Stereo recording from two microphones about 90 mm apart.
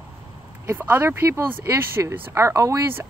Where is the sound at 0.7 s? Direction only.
20° right (ahead or behind).